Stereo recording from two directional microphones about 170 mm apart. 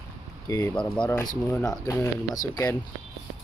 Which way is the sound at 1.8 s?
15° left (ahead or behind).